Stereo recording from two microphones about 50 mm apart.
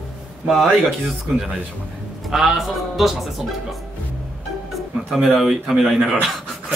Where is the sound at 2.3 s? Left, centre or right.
Centre.